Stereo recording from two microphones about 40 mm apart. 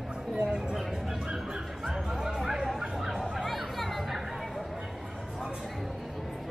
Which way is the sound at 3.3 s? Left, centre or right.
Centre.